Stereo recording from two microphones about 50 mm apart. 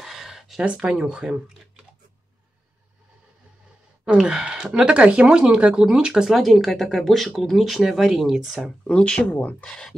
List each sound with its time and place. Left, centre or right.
0.0 s a sound: centre
0.6 s speech: centre
4.0 s sigh: centre
4.7 s speech: right; by 8.6 s centre
8.8 s speech: centre
9.3 s speech: left
9.7 s speech: centre